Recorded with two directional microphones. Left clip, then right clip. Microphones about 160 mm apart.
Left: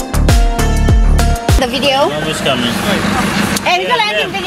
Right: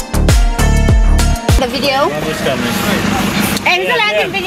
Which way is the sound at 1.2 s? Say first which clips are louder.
Left 2 dB; centre (ahead or behind).